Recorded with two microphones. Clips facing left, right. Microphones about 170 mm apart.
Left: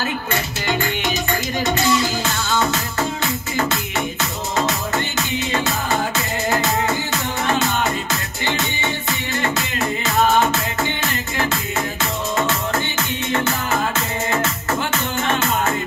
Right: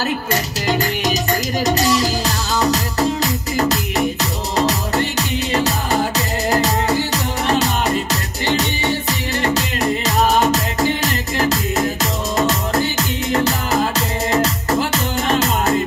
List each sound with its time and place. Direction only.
0.0 s music: 40° right (ahead or behind)